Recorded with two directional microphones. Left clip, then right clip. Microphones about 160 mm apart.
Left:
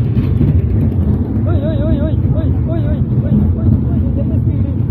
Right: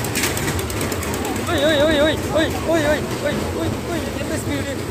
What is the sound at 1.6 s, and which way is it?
Music, 20° right (ahead or behind).